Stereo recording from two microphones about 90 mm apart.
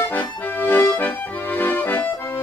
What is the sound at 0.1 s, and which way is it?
Accordion, 20° left (ahead or behind).